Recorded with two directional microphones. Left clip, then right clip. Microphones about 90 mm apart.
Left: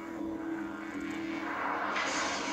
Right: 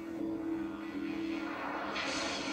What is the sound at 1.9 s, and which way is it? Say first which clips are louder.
Music: left 4 dB; 15° left (ahead or behind).